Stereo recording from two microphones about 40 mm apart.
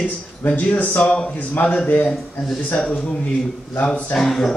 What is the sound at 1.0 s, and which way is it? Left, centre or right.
Speech, left.